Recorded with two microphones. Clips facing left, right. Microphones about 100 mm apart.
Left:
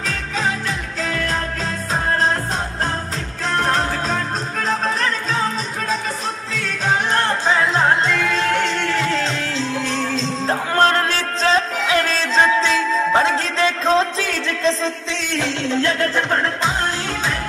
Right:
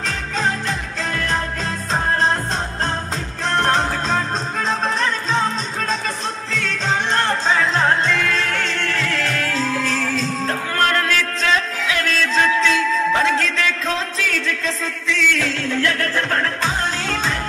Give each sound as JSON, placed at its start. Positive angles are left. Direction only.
{"t": 0.0, "sound": "music", "side_deg": 5}
{"t": 3.5, "sound": "music", "side_deg": 0}
{"t": 7.4, "sound": "music", "side_deg": 15}